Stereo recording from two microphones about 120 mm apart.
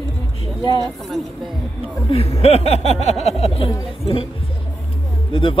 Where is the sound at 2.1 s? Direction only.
55° left (ahead or behind).